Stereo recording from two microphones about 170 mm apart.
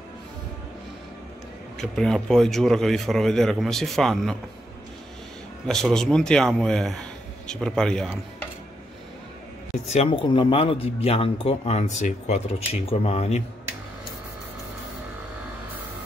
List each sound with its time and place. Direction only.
1.8 s speech: 5° left (ahead or behind)
5.7 s speech: 5° left (ahead or behind)
9.8 s a man's voice: 40° left (ahead or behind)
10.2 s a man's voice: 30° left (ahead or behind)